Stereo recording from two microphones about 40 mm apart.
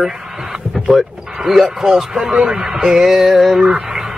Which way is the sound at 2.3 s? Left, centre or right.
Right.